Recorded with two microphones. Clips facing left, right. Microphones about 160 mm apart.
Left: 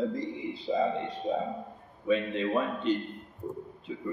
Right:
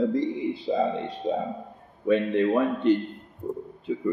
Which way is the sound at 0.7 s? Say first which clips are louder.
Right 3 dB; 65° right (ahead or behind).